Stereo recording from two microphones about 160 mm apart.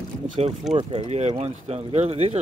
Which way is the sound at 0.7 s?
40° right (ahead or behind).